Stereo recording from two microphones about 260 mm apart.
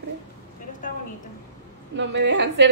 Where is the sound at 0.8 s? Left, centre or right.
Left.